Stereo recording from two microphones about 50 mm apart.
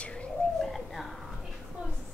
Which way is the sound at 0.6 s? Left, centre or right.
Centre.